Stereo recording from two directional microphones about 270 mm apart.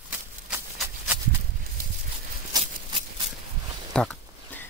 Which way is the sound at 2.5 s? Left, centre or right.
Centre.